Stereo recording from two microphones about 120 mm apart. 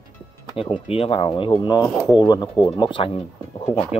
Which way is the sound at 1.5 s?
35° left (ahead or behind).